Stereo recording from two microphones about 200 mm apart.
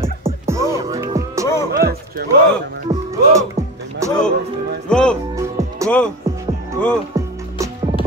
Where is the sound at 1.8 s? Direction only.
50° right (ahead or behind).